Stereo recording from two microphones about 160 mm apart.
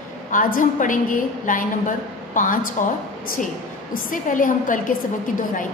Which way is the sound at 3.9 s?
60° left (ahead or behind).